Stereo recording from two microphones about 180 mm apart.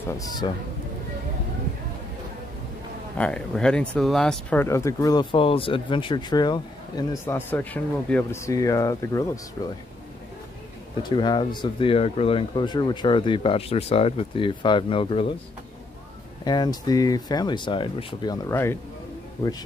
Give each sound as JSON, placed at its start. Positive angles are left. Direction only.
{"t": 0.2, "sound": "speech", "side_deg": 20}
{"t": 3.2, "sound": "speech", "side_deg": 5}
{"t": 11.0, "sound": "speech", "side_deg": 25}
{"t": 16.4, "sound": "speech", "side_deg": 25}